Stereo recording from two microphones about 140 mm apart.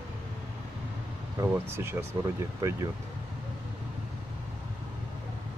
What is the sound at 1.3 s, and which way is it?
Speech, 15° right (ahead or behind).